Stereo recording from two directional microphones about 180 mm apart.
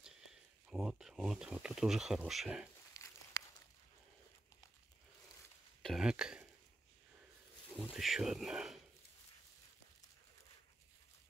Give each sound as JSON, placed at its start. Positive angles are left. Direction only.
{"t": 0.7, "sound": "speech", "side_deg": -5}
{"t": 2.9, "sound": "crumpling", "side_deg": 15}
{"t": 5.8, "sound": "speech", "side_deg": 0}
{"t": 7.7, "sound": "speech", "side_deg": 0}